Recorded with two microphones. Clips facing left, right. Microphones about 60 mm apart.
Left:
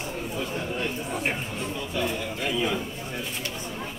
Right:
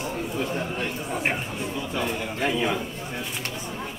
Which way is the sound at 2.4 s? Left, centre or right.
Right.